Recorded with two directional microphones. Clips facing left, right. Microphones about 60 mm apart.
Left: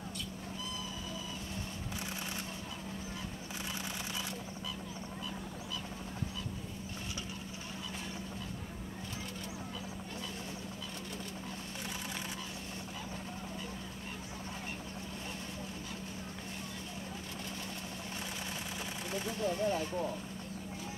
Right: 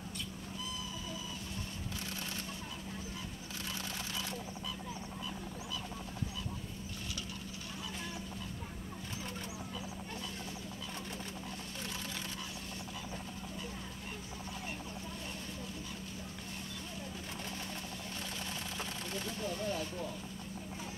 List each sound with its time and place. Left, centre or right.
19.0 s speech: centre